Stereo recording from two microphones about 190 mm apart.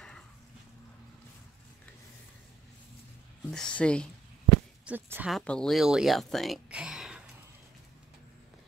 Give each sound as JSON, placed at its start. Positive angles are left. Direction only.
{"t": 3.4, "sound": "a sound", "side_deg": 5}
{"t": 4.8, "sound": "speech", "side_deg": -10}
{"t": 5.4, "sound": "speech", "side_deg": 5}